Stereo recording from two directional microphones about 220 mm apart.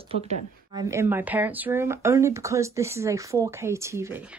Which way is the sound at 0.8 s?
10° right (ahead or behind).